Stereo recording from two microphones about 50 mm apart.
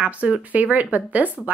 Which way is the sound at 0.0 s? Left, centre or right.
Right.